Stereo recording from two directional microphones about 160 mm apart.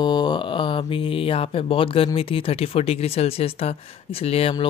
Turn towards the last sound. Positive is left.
turn(degrees=35)  # may be behind; listen again after turning